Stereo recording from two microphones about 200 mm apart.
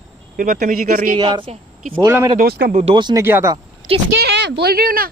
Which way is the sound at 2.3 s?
50° right (ahead or behind).